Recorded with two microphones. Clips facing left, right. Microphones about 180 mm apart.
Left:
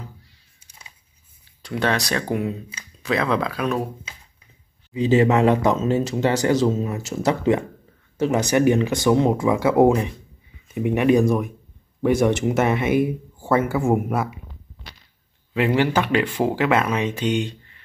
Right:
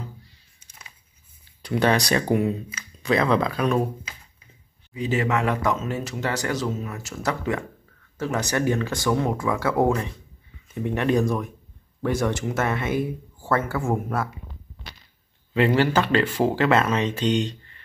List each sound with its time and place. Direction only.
1.6 s speech: centre (ahead or behind)
4.9 s speech: 25° left (ahead or behind)
15.5 s speech: 10° left (ahead or behind)